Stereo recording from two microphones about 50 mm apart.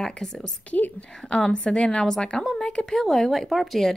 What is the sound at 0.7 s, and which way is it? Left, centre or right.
Speech, left.